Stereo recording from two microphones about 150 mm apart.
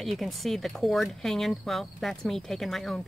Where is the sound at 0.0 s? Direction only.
Centre (ahead or behind).